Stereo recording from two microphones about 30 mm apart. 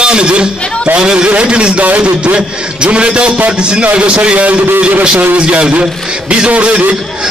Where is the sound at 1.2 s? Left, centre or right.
Right.